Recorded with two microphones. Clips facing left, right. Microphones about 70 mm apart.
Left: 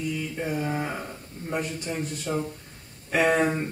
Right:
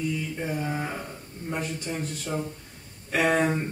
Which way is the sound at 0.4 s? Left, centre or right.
Centre.